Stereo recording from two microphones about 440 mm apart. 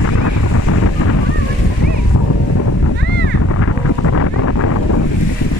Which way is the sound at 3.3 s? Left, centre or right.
Left.